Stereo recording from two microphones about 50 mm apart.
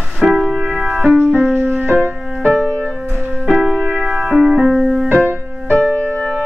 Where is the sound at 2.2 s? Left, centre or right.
Centre.